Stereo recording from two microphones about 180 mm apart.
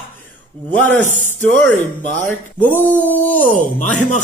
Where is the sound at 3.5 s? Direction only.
45° left (ahead or behind).